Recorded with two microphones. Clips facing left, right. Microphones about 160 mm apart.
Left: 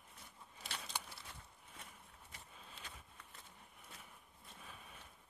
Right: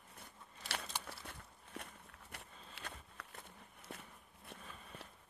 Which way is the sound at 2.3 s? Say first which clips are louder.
Right 3 dB; 70° right (ahead or behind).